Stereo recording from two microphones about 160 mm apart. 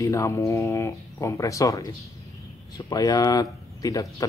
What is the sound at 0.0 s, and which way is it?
Speech, 20° left (ahead or behind).